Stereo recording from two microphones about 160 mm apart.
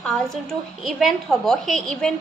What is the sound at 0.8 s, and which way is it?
A woman's voice, centre (ahead or behind).